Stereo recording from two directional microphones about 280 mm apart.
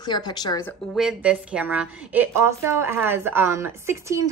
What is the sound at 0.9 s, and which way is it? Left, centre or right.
A woman's voice, centre.